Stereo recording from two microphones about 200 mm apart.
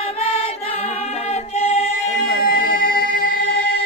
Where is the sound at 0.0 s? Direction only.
30° left (ahead or behind).